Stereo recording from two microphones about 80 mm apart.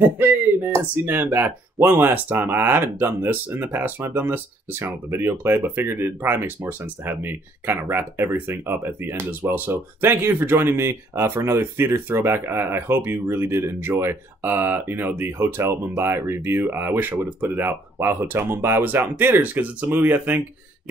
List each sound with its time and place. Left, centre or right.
0.7 s speech: right